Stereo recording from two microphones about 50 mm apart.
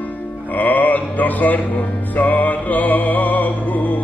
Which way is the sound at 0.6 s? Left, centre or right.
Left.